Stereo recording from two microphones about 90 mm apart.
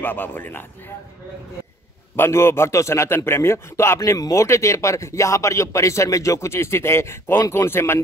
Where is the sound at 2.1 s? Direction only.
30° left (ahead or behind).